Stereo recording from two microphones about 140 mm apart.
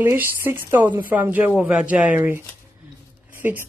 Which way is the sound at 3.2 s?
15° right (ahead or behind).